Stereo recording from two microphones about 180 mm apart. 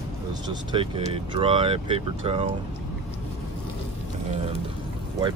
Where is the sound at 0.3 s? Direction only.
25° right (ahead or behind).